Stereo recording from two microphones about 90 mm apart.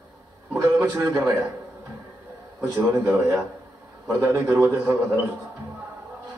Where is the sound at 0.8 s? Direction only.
25° right (ahead or behind).